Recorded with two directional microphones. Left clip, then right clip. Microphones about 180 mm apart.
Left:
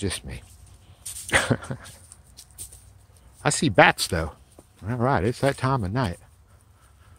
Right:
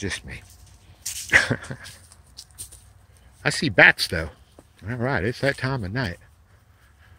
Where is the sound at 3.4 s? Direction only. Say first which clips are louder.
Right 2 dB; 20° left (ahead or behind).